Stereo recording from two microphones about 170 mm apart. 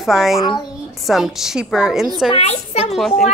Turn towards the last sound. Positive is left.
turn(degrees=0)  # may be behind; listen again after turning